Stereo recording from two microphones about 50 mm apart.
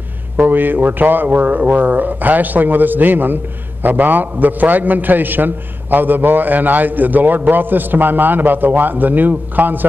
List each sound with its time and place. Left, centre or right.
0.4 s a man's voice: right